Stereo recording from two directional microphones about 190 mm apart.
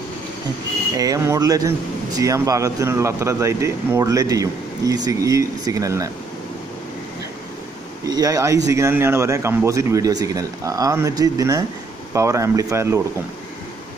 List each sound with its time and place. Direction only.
0.9 s speech: 15° right (ahead or behind)
8.1 s speech: 20° right (ahead or behind)